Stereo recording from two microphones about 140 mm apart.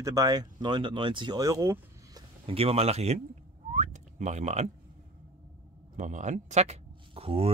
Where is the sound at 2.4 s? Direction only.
45° right (ahead or behind).